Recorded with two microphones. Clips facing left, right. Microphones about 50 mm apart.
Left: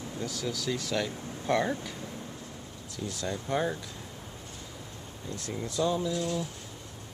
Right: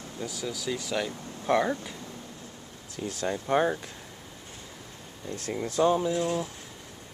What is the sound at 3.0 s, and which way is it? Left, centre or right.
Speech, right.